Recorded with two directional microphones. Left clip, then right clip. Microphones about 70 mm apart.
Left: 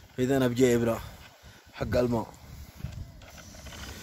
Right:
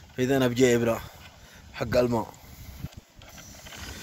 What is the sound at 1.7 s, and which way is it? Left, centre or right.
Speech, centre.